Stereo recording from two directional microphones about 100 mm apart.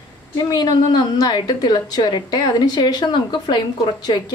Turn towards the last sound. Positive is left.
turn(degrees=50)  # may be behind; listen again after turning